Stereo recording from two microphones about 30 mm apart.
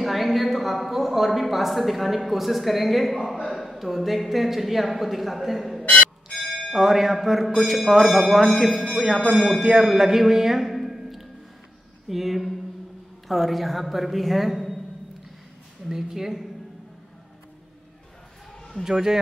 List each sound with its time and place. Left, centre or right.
0.0 s a woman's voice: centre
10.7 s a sound: centre
12.1 s a woman's voice: centre
15.9 s speech: centre
18.9 s speech: centre